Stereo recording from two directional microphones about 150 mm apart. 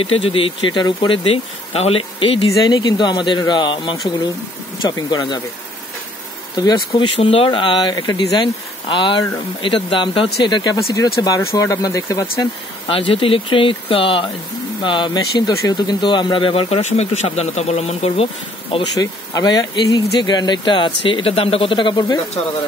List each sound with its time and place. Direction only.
0.0 s speech: 40° left (ahead or behind)
6.5 s speech: 30° left (ahead or behind)
12.8 s speech: 35° left (ahead or behind)
18.9 s speech: 25° left (ahead or behind)